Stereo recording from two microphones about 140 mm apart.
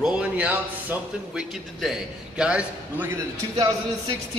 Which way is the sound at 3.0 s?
25° right (ahead or behind).